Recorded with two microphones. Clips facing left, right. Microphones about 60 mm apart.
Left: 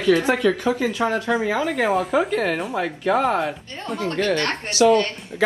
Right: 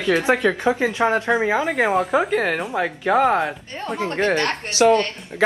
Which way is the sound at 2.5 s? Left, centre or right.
Centre.